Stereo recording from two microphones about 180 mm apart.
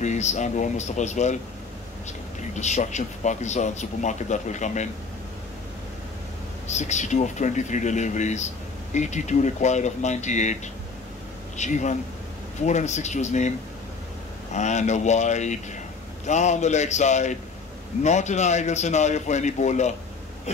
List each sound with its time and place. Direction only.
0.0 s a man's voice: 40° left (ahead or behind)
2.5 s a man's voice: 40° left (ahead or behind)
6.7 s a man's voice: 40° left (ahead or behind)
14.5 s a man's voice: 40° left (ahead or behind)